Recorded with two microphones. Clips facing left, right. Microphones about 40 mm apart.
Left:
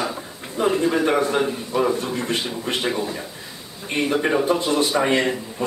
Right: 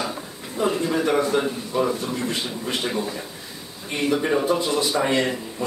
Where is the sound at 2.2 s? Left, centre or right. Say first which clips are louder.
Left 2 dB; left.